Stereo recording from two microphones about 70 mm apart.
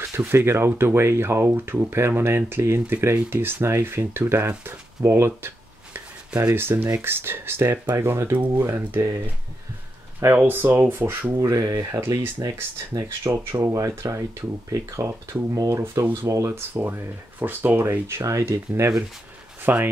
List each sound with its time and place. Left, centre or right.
0.1 s speech: right
6.5 s speech: right
8.3 s speech: right
8.6 s speech: right
10.2 s speech: right
11.3 s speech: right
12.2 s speech: right
13.3 s speech: right
13.7 s speech: right
16.5 s speech: right
19.6 s speech: right